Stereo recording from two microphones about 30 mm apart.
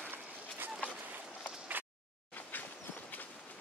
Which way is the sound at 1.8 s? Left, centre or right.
Right.